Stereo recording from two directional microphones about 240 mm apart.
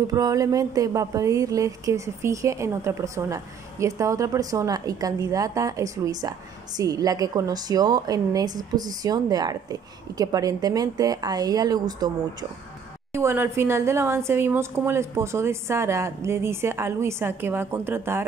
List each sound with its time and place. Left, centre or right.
0.1 s a woman's voice: centre